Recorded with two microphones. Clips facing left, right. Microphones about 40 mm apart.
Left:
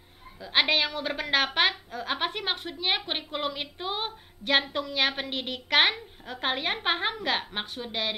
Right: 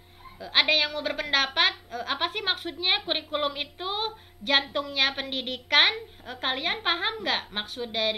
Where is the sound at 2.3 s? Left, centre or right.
Centre.